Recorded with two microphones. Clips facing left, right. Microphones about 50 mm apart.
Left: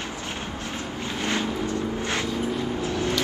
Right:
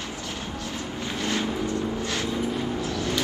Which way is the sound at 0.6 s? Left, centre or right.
Left.